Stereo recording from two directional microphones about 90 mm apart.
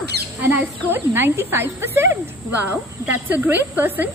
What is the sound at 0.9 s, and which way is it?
A woman's voice, 25° right (ahead or behind).